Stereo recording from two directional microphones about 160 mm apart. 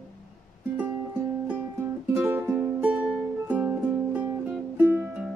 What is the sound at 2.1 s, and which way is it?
Music, 10° right (ahead or behind).